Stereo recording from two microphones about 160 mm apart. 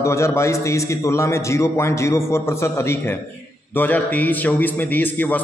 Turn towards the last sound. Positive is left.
turn(degrees=10)  # may be behind; listen again after turning